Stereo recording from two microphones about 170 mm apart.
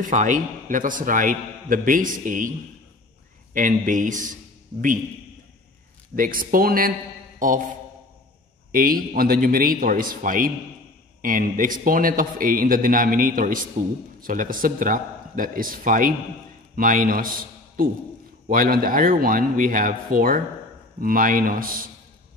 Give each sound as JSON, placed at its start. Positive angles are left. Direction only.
{"t": 0.0, "sound": "a man's voice", "side_deg": -45}
{"t": 3.5, "sound": "a man's voice", "side_deg": -50}
{"t": 6.1, "sound": "a man's voice", "side_deg": -55}
{"t": 7.3, "sound": "mantra", "side_deg": -50}
{"t": 8.7, "sound": "a man's voice", "side_deg": -55}